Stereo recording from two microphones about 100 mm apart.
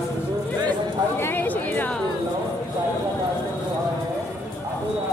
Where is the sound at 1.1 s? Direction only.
20° left (ahead or behind).